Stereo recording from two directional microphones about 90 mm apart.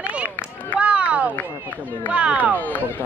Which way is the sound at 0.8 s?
15° right (ahead or behind).